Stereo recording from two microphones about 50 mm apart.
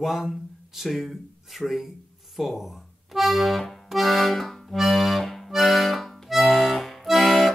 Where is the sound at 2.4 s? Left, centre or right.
Centre.